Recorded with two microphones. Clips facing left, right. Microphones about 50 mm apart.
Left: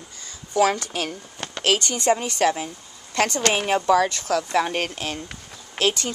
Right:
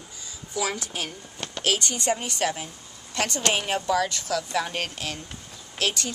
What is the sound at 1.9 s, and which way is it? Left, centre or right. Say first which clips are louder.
Speech: left 5 dB; left.